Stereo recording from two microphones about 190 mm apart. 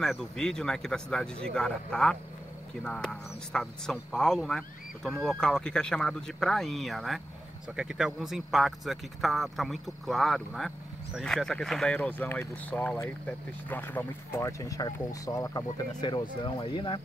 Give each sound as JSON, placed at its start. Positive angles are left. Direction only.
{"t": 0.0, "sound": "speech", "side_deg": 5}